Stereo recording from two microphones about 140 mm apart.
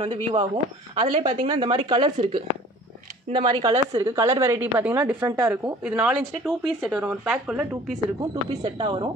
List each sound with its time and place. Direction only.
0.0 s a woman's voice: 40° right (ahead or behind); by 8.0 s 5° right (ahead or behind)
8.2 s speech: 35° right (ahead or behind)